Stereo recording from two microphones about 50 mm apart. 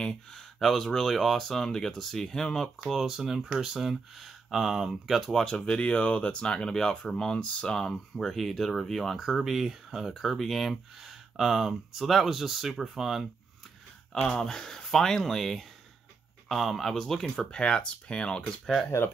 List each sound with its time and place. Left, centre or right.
0.0 s speech: centre
2.8 s speech: centre
5.5 s speech: left; by 13.3 s centre
14.2 s speech: centre
17.5 s speech: centre